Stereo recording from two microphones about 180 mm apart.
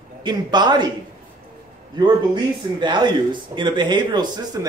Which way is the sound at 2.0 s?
25° right (ahead or behind).